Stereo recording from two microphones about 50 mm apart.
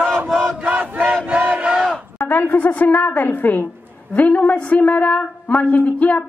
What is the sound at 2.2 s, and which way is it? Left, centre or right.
A woman's voice, left.